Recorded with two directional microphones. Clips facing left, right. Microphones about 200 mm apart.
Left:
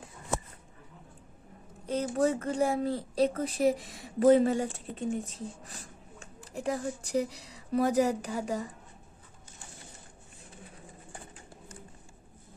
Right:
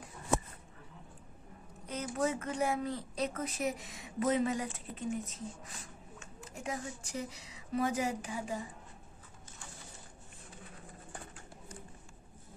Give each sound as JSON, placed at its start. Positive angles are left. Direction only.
{"t": 1.9, "sound": "speech", "side_deg": 30}